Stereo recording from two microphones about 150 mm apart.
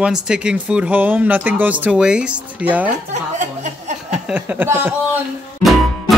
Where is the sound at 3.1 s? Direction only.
50° right (ahead or behind).